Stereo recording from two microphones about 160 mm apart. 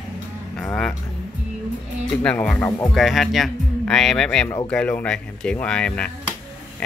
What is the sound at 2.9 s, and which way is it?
Speech, centre (ahead or behind).